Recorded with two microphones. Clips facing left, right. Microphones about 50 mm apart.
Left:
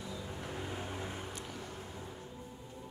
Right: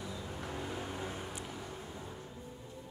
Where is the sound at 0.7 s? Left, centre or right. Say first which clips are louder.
Right 1 dB; left.